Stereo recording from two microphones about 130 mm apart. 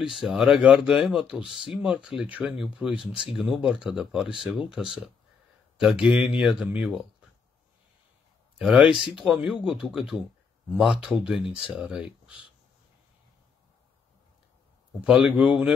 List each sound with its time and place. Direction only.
0.0 s speech: 5° right (ahead or behind)
8.5 s speech: 5° right (ahead or behind)
15.0 s speech: 10° right (ahead or behind)